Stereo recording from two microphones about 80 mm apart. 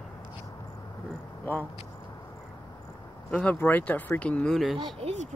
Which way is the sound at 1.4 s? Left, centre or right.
Left.